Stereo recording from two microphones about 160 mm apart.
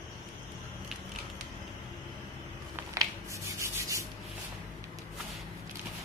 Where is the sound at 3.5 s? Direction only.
20° right (ahead or behind).